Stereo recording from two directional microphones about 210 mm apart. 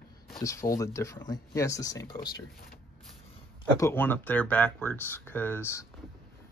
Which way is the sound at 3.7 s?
10° left (ahead or behind).